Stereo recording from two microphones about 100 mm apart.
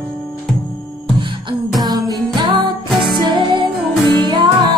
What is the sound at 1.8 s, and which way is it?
Music, 40° right (ahead or behind).